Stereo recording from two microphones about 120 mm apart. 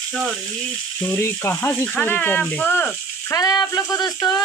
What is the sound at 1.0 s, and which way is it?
Speech, 20° left (ahead or behind).